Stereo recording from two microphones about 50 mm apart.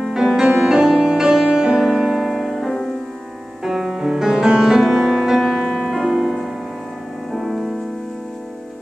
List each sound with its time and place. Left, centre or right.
0.0 s music: centre
3.6 s music: centre